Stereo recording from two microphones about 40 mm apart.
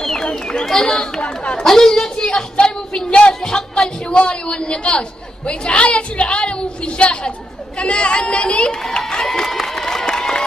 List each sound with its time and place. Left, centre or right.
0.0 s a sound: centre
0.7 s speech: centre
1.7 s a woman's voice: centre
10.0 s crowd: centre